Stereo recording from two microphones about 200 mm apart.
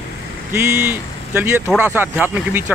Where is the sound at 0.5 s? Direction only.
10° right (ahead or behind).